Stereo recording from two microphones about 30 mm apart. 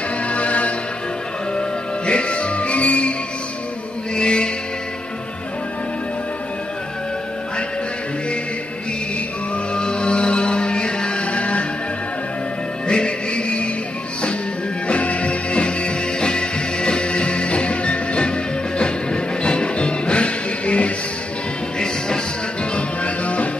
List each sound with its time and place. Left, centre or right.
0.3 s music: left
1.5 s music: left
4.1 s music: left
9.8 s music: left
12.8 s music: left
14.9 s music: left
22.8 s music: left